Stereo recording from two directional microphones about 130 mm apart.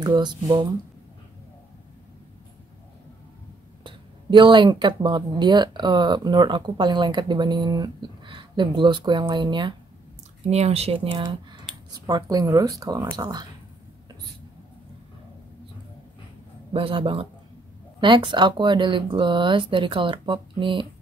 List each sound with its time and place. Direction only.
0.0 s speech: 35° right (ahead or behind)
3.8 s speech: 40° right (ahead or behind)
10.5 s speech: 55° right (ahead or behind)
11.7 s a sound: 5° right (ahead or behind)
12.1 s speech: 30° right (ahead or behind)
16.7 s speech: 45° right (ahead or behind)